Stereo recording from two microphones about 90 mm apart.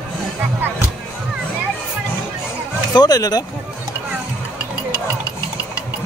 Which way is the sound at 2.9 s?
50° left (ahead or behind).